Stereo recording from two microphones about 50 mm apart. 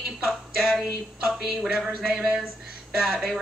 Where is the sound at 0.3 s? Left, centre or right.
Centre.